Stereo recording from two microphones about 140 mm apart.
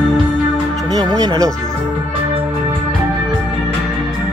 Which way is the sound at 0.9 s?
25° right (ahead or behind).